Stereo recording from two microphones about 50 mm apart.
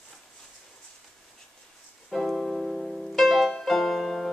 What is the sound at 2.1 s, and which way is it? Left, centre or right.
Music, centre.